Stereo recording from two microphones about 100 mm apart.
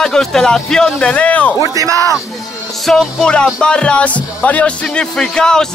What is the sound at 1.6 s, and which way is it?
Speech, 35° right (ahead or behind).